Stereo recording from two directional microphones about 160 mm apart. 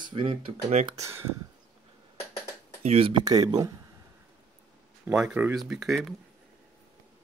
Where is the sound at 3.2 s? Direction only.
25° right (ahead or behind).